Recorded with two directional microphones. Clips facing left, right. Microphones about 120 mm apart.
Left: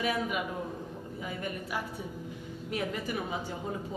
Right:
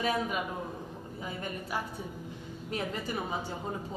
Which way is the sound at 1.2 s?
35° right (ahead or behind).